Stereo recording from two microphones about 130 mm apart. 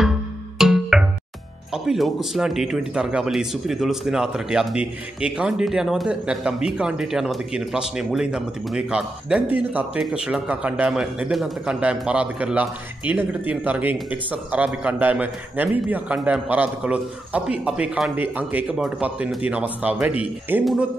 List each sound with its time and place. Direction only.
0.6 s music: centre (ahead or behind)
1.7 s a man's voice: centre (ahead or behind)